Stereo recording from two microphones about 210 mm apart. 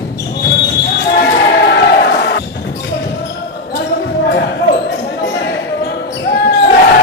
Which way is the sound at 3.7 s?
50° left (ahead or behind).